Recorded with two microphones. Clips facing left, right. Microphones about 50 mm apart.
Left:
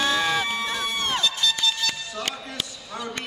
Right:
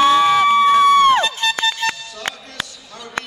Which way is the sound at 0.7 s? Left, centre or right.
Right.